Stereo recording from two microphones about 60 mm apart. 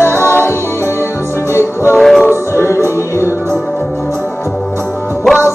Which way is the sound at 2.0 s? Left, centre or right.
Centre.